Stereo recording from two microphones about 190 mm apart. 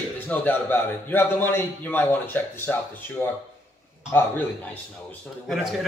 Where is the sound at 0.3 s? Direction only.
10° left (ahead or behind).